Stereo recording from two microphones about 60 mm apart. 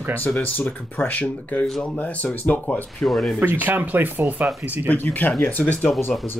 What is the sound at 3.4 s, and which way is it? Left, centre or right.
Speech, right.